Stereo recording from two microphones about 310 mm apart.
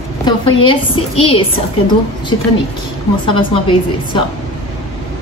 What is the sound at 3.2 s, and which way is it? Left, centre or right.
A woman's voice, centre.